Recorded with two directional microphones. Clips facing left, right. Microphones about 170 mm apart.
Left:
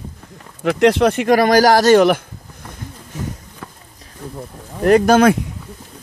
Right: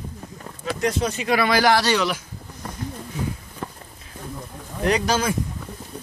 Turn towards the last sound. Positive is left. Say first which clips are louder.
# left 11 dB
turn(degrees=60)  # may be behind; listen again after turning